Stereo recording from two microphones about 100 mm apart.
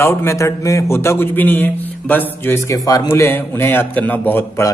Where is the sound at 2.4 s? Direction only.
30° left (ahead or behind).